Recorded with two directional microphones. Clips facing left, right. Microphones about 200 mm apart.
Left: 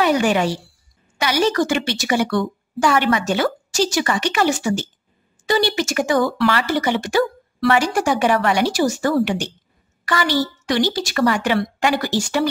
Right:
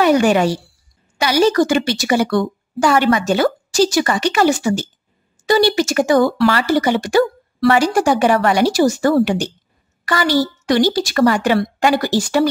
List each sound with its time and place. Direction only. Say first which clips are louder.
0.0 s a woman's voice: right 4 dB; 45° right (ahead or behind)